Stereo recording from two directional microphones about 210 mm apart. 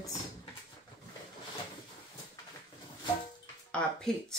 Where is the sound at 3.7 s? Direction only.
5° left (ahead or behind).